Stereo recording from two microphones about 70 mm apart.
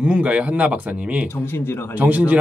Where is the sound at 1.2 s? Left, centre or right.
Left.